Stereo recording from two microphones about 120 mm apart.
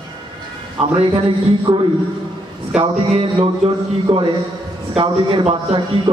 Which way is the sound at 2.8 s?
50° right (ahead or behind).